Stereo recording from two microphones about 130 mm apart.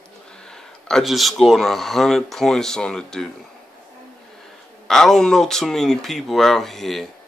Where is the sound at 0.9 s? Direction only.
Centre (ahead or behind).